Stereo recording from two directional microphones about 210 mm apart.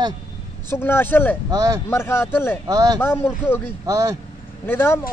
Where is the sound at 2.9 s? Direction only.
10° left (ahead or behind).